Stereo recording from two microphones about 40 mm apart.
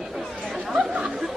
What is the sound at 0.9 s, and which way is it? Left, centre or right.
Chatter, right.